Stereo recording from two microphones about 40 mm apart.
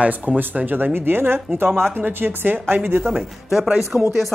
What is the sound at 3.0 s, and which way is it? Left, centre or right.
Speech, centre.